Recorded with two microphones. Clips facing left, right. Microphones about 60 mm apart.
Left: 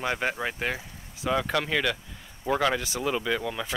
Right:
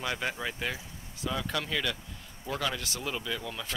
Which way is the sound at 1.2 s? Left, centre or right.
Left.